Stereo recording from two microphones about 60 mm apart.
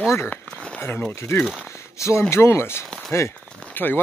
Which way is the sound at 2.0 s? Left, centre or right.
Left.